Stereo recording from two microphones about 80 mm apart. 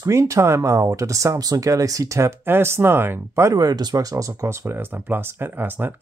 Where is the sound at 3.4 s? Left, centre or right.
Right.